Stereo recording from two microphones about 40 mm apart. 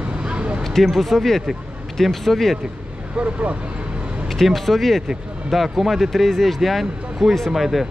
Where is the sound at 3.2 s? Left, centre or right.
Right.